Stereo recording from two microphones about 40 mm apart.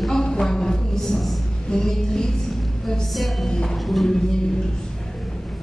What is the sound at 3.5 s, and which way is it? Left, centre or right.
Speech, centre.